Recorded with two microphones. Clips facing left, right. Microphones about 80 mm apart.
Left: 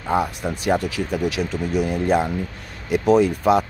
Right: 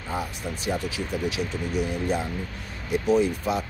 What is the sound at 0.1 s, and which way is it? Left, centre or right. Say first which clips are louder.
Speech: left 9 dB; left.